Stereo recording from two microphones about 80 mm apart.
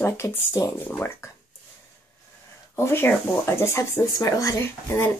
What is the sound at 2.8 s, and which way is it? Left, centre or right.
Speech, left.